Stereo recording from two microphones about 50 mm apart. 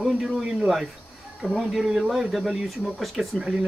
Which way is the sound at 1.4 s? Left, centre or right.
Centre.